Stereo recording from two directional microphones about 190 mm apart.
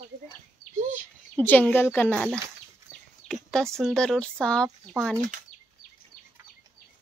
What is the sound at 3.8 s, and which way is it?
Speech, centre (ahead or behind).